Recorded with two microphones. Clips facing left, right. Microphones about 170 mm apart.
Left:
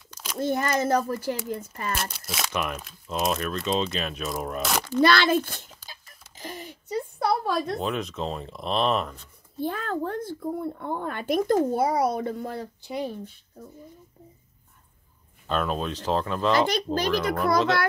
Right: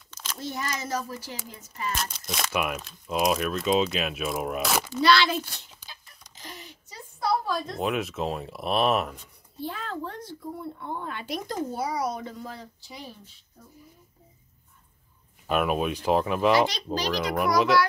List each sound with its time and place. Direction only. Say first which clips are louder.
0.1 s a sound: left 2 dB; 10° left (ahead or behind)
0.4 s speech: left 9 dB; 55° left (ahead or behind)
2.0 s speech: even; 5° left (ahead or behind)
5.0 s a child's voice: left 2 dB; 50° left (ahead or behind)
6.4 s a sound: left 6 dB; 55° left (ahead or behind)
7.8 s speech: right 1 dB; 5° right (ahead or behind)
9.6 s speech: left 5 dB; 50° left (ahead or behind)
15.4 s speech: right 2 dB; 10° right (ahead or behind)
16.5 s speech: left 1 dB; 55° left (ahead or behind)